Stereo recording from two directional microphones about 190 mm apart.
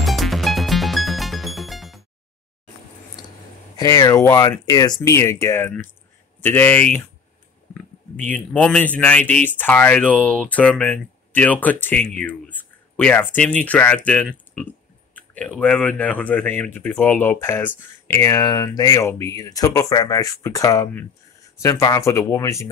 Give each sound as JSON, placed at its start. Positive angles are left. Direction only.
{"t": 0.0, "sound": "music", "side_deg": 0}
{"t": 3.7, "sound": "speech", "side_deg": 20}